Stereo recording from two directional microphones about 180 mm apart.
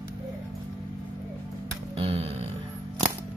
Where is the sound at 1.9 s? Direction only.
30° right (ahead or behind).